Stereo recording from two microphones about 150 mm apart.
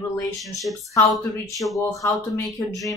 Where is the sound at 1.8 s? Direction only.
20° left (ahead or behind).